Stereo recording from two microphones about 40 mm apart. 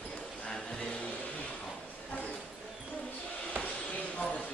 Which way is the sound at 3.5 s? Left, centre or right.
Left.